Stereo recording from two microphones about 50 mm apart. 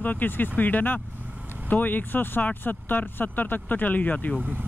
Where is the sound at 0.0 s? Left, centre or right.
Left.